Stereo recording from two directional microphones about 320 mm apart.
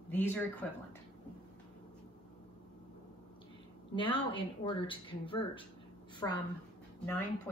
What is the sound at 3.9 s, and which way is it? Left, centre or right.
A woman's voice, centre.